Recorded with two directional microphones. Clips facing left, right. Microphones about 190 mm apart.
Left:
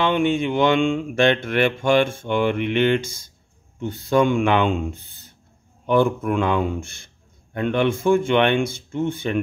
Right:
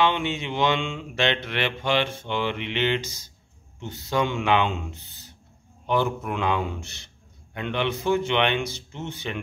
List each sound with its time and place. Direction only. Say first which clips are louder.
0.0 s mantra: left 5 dB; 50° left (ahead or behind)